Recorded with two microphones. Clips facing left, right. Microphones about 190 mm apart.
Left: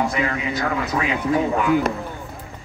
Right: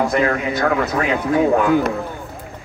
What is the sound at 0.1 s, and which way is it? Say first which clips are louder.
Speech: right 5 dB; 60° right (ahead or behind).